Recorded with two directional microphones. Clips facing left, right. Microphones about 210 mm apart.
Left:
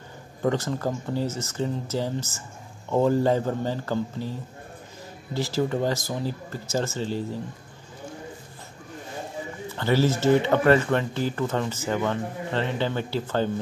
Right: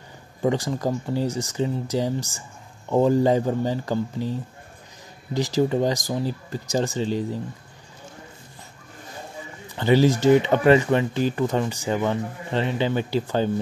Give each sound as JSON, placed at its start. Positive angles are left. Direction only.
{"t": 0.4, "sound": "speech", "side_deg": -15}
{"t": 9.8, "sound": "speech", "side_deg": -15}